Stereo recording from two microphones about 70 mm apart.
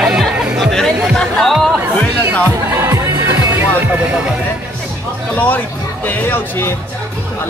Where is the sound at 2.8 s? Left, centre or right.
Right.